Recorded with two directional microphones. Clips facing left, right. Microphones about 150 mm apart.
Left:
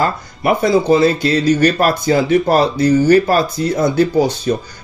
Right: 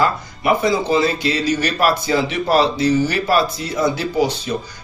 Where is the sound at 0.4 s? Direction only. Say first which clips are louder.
Left 4 dB; 45° left (ahead or behind).